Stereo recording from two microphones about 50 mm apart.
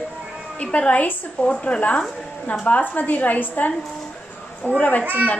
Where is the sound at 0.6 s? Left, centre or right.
Left.